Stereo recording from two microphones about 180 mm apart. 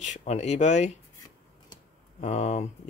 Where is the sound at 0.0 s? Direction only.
40° left (ahead or behind).